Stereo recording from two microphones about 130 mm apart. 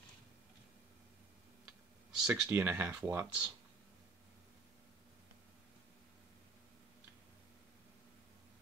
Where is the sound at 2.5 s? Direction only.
15° right (ahead or behind).